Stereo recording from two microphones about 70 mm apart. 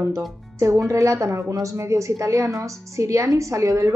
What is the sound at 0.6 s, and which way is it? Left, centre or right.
A woman's voice, right.